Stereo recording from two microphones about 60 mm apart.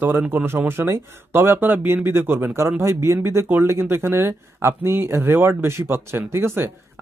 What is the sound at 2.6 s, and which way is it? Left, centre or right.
Speech, right.